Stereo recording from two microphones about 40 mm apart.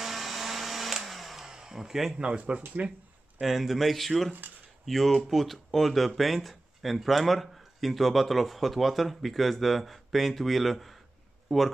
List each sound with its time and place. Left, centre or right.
0.0 s blender: centre
1.5 s a sound: centre
2.1 s speech: right
3.3 s speech: centre